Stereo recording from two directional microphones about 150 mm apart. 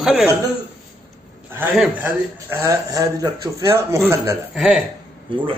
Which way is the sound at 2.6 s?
20° right (ahead or behind).